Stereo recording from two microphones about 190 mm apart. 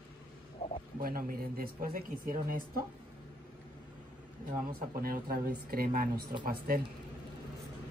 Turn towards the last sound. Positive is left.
turn(degrees=-50)  # may be behind; listen again after turning